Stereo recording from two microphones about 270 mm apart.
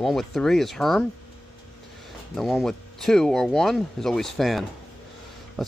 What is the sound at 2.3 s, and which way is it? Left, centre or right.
Speech, centre.